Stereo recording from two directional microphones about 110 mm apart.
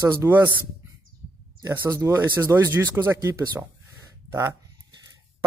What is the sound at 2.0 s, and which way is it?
Speech, 25° right (ahead or behind).